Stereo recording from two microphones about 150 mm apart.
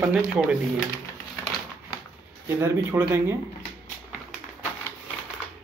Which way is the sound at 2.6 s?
15° right (ahead or behind).